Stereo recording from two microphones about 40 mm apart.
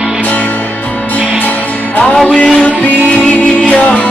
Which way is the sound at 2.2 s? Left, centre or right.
Left.